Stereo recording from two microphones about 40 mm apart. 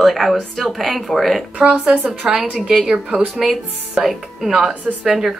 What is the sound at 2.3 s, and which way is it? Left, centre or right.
Speech, right.